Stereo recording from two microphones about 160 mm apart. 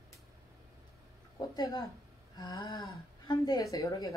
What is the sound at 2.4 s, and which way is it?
A woman's voice, 25° left (ahead or behind).